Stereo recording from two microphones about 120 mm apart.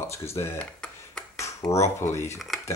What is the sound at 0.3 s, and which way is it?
Speech, 20° left (ahead or behind).